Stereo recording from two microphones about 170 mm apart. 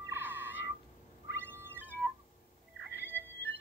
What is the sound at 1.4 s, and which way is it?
Music, 15° right (ahead or behind).